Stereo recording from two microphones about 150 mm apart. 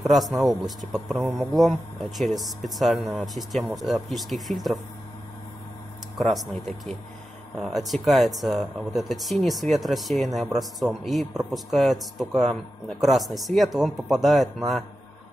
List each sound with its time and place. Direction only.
0.0 s speech: centre (ahead or behind)
6.1 s speech: centre (ahead or behind)